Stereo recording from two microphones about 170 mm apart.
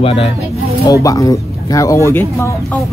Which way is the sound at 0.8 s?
20° left (ahead or behind).